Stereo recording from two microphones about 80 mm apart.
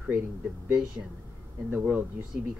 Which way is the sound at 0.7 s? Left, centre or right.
Centre.